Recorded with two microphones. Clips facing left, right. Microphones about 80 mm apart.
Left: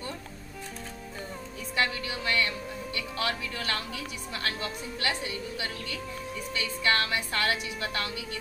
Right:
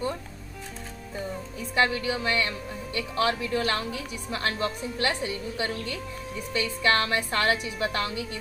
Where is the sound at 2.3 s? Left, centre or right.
Right.